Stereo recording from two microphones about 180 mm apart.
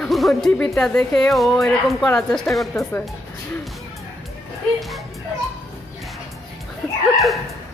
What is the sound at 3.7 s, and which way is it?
Music, centre (ahead or behind).